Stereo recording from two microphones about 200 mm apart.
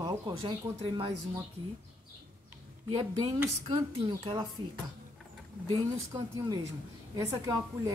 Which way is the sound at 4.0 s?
25° right (ahead or behind).